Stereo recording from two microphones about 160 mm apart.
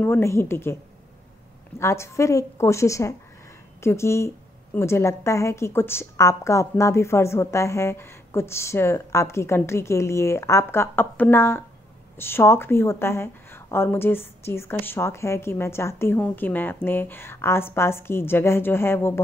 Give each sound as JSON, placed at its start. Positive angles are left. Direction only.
{"t": 0.0, "sound": "a woman's voice", "side_deg": 15}
{"t": 1.8, "sound": "a woman's voice", "side_deg": 15}